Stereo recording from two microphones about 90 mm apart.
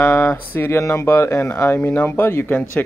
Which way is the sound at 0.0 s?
25° left (ahead or behind).